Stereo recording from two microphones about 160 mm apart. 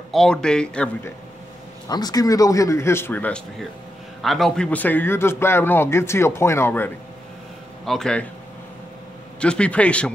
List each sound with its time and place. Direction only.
0.1 s speech: 5° left (ahead or behind)
1.9 s a man's voice: 25° left (ahead or behind)
7.8 s speech: 5° left (ahead or behind)
9.4 s a man's voice: 5° left (ahead or behind)